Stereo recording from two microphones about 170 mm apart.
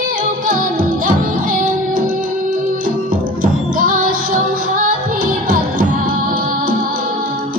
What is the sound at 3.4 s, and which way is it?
Music, 55° right (ahead or behind).